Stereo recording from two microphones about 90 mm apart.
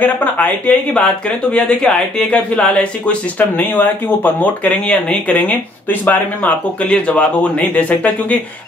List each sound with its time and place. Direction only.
0.0 s speech: 20° left (ahead or behind)